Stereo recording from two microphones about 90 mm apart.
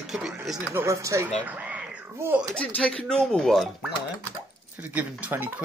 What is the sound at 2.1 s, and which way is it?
Speech, 30° right (ahead or behind).